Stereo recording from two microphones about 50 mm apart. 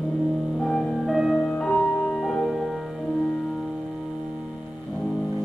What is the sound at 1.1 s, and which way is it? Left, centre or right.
Music, centre.